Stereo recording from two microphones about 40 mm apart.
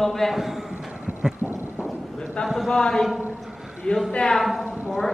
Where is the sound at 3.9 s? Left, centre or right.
Left.